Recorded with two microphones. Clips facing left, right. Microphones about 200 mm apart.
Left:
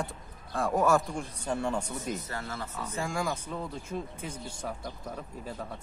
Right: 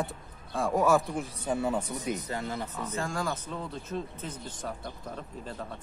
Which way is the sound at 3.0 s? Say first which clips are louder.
Left 1 dB; 10° left (ahead or behind).